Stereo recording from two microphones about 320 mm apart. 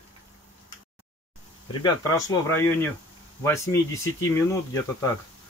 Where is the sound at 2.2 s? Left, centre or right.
Centre.